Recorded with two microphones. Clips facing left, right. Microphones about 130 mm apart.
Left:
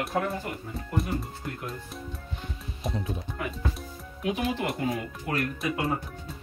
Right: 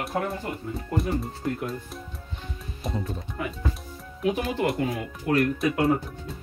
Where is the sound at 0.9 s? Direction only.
Centre (ahead or behind).